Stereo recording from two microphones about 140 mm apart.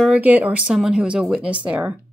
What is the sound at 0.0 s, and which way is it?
Speech, 10° right (ahead or behind).